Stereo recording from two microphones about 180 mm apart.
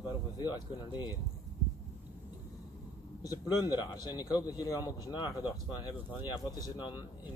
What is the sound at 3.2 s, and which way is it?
Speech, 20° left (ahead or behind).